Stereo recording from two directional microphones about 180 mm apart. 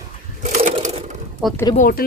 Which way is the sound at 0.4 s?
40° right (ahead or behind).